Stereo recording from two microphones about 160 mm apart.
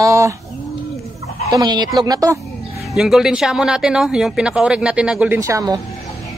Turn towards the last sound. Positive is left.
turn(degrees=-20)  # may be behind; listen again after turning